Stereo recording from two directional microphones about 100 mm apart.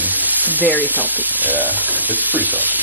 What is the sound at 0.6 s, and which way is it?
Speech, 20° right (ahead or behind).